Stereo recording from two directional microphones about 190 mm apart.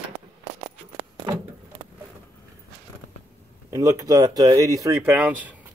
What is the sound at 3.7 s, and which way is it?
Speech, 15° right (ahead or behind).